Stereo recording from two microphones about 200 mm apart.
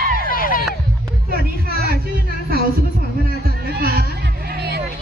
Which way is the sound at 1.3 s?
50° right (ahead or behind).